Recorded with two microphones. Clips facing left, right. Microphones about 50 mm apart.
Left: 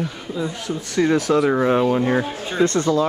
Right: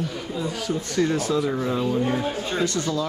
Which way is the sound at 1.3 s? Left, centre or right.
Left.